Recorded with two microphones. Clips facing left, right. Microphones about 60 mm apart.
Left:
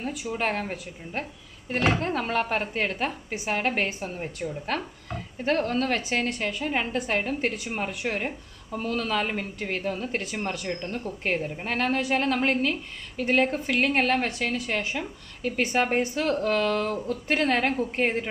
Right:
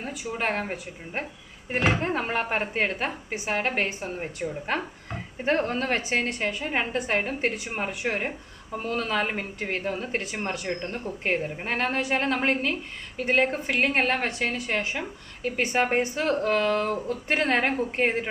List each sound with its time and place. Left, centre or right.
0.0 s speech: centre